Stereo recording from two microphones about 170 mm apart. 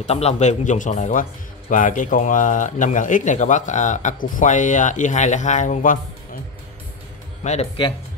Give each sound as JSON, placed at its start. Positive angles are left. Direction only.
{"t": 0.0, "sound": "speech", "side_deg": 40}
{"t": 7.4, "sound": "speech", "side_deg": 35}